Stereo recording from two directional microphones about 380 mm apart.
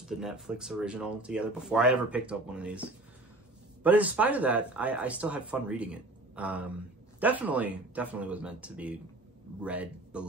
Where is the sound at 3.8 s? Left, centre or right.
Centre.